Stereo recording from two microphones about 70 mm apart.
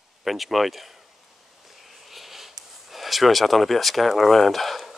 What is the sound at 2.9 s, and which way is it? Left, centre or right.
Speech, centre.